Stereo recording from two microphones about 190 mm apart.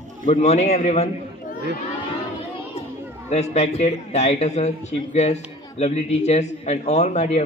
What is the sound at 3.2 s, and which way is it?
A man's voice, 35° left (ahead or behind).